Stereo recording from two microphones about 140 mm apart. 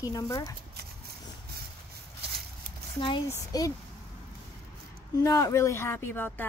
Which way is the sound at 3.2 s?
25° left (ahead or behind).